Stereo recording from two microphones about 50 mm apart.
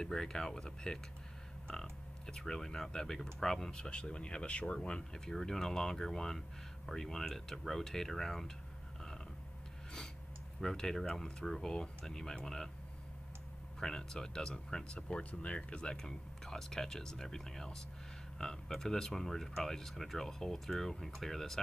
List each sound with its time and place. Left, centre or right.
0.0 s speech: centre
10.6 s speech: centre
13.7 s speech: centre